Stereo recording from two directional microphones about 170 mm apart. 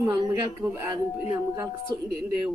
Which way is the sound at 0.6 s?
10° right (ahead or behind).